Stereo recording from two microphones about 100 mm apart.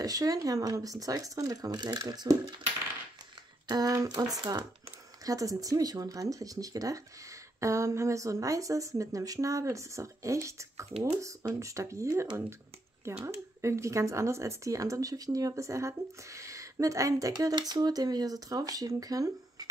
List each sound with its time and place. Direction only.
0.0 s speech: 35° right (ahead or behind)
3.6 s speech: 40° right (ahead or behind)